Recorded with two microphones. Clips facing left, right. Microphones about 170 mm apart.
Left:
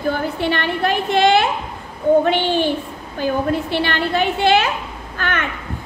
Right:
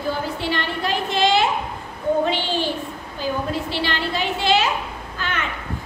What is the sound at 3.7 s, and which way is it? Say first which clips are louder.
A woman's voice: left 5 dB; 55° left (ahead or behind).